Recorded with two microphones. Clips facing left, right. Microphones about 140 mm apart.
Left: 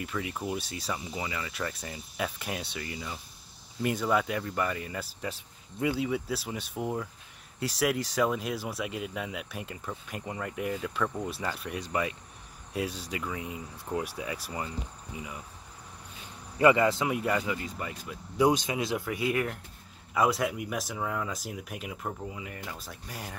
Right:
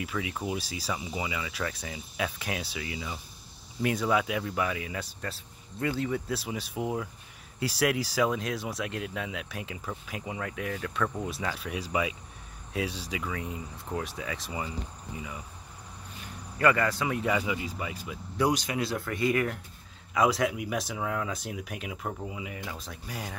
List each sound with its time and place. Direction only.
0.0 s speech: centre (ahead or behind)
5.2 s speech: 15° left (ahead or behind)
14.5 s cricket: 5° right (ahead or behind)
16.5 s speech: 20° left (ahead or behind)
17.3 s speech: 5° right (ahead or behind)
18.4 s speech: 20° left (ahead or behind); by 23.3 s centre (ahead or behind)